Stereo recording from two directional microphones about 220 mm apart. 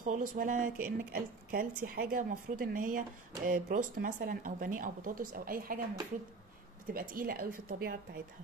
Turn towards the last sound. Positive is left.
turn(degrees=-40)  # may be behind; listen again after turning